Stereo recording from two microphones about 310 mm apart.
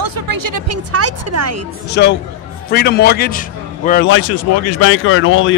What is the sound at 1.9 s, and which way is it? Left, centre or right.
Speech, left.